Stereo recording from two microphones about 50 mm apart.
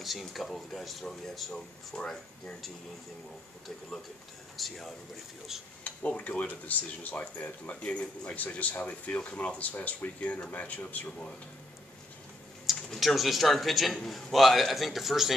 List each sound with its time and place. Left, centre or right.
0.0 s a man's voice: centre
4.6 s a man's voice: centre
5.9 s speech: left
12.6 s a man's voice: centre